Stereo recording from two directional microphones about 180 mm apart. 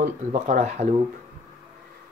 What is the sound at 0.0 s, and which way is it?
Speech, 40° right (ahead or behind).